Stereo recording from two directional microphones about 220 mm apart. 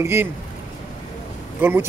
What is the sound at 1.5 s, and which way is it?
Speech, 10° right (ahead or behind).